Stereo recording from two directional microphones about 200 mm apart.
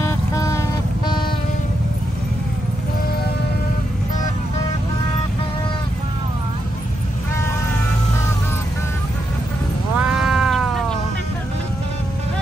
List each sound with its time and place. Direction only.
0.0 s music: 15° left (ahead or behind)
9.9 s cat: centre (ahead or behind)